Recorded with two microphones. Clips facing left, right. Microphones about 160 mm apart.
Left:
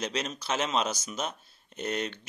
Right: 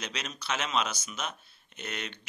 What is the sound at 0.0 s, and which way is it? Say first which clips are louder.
A man's voice: left 6 dB; 35° left (ahead or behind).